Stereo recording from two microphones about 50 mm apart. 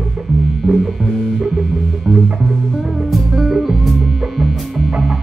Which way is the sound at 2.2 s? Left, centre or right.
Right.